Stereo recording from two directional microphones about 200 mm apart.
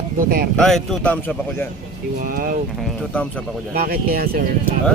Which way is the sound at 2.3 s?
45° right (ahead or behind).